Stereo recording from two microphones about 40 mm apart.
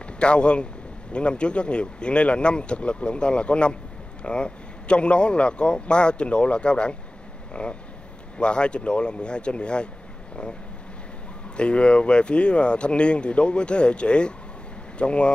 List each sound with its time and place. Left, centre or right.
0.0 s speech: left
11.5 s speech: left